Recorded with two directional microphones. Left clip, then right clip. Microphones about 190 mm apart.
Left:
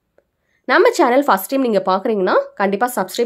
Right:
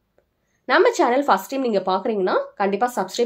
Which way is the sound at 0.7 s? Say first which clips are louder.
Left 4 dB; 40° left (ahead or behind).